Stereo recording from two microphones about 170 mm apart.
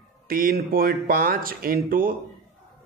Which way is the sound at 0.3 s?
55° right (ahead or behind).